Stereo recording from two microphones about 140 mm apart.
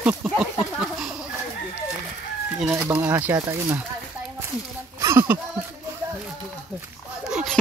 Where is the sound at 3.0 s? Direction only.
15° right (ahead or behind).